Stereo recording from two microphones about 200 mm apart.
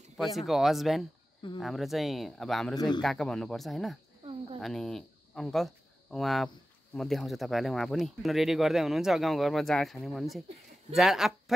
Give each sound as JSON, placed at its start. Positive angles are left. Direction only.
{"t": 0.4, "sound": "speech", "side_deg": 0}
{"t": 2.7, "sound": "a man's voice", "side_deg": 20}
{"t": 3.0, "sound": "speech", "side_deg": 0}
{"t": 4.2, "sound": "cricket", "side_deg": -25}
{"t": 4.6, "sound": "speech", "side_deg": 0}